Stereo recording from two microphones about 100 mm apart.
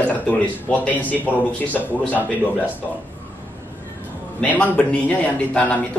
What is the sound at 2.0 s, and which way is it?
Speech, 15° left (ahead or behind).